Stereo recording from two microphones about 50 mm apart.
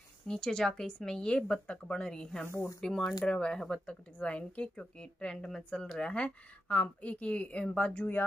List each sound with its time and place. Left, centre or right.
0.3 s speech: centre
2.4 s speech: left
2.8 s speech: centre
4.2 s speech: left
8.0 s speech: left